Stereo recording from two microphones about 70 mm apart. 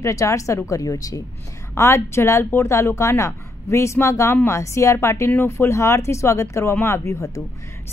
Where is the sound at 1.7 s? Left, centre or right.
Left.